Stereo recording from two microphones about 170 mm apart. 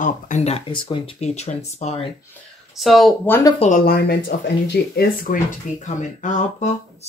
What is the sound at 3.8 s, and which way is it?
Speech, 65° left (ahead or behind).